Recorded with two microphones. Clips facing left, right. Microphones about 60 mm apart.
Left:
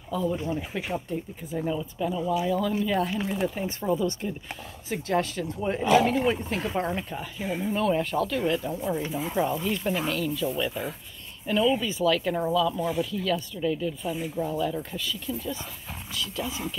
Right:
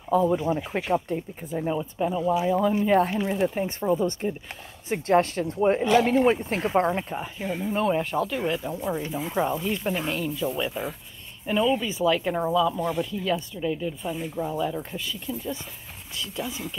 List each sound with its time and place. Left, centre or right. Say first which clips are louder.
0.1 s speech: right 6 dB; right
1.7 s speech: right 3 dB; right
6.3 s speech: right 5 dB; right
7.4 s speech: left 1 dB; centre
7.7 s speech: right 1 dB; centre
9.4 s speech: right 1 dB; centre
10.7 s speech: right 1 dB; centre
11.4 s speech: even; centre
12.7 s speech: right 1 dB; centre
13.0 s speech: right 1 dB; centre
14.0 s speech: even; centre
14.3 s speech: right 1 dB; centre
14.8 s speech: even; right